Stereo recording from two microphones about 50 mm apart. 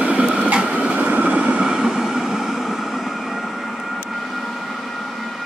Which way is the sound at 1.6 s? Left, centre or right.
Centre.